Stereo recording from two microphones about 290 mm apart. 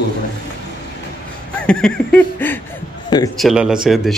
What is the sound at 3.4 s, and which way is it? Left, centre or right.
Speech, centre.